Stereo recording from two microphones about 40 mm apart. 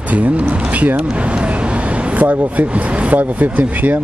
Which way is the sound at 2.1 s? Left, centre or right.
Right.